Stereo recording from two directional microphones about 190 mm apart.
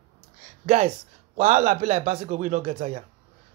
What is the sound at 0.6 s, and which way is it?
Speech, 40° right (ahead or behind).